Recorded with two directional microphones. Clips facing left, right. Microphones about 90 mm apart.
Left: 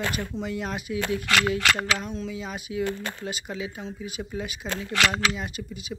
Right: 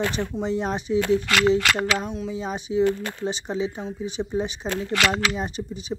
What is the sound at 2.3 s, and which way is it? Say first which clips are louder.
Speech: right 6 dB; 30° right (ahead or behind).